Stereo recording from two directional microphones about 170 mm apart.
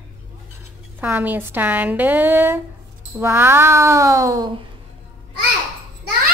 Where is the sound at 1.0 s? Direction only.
10° right (ahead or behind).